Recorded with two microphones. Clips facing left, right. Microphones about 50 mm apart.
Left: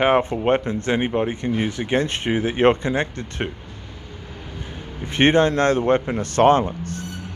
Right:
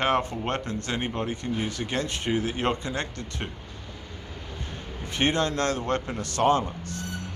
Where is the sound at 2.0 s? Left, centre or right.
Left.